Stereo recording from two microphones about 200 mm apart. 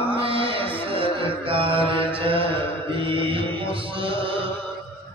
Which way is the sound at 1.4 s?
25° right (ahead or behind).